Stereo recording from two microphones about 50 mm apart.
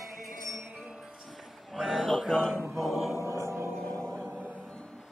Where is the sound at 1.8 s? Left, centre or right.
Centre.